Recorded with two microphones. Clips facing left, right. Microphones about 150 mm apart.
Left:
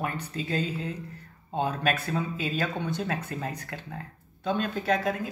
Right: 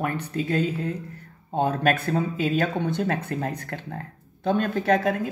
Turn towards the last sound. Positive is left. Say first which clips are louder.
# right 5 dB
turn(degrees=-60)  # may be behind; listen again after turning